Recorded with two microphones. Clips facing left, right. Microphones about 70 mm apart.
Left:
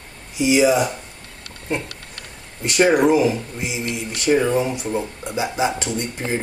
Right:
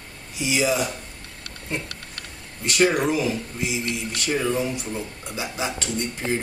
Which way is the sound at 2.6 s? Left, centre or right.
Left.